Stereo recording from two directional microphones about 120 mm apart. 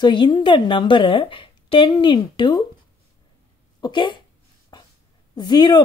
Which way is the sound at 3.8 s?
40° left (ahead or behind).